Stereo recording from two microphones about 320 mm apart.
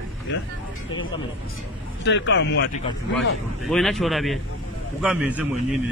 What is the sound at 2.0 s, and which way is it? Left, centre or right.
Speech, left.